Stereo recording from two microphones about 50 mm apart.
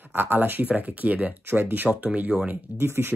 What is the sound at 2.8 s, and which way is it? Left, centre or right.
Speech, right.